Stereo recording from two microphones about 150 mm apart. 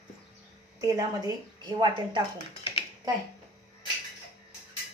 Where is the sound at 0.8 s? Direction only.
25° right (ahead or behind).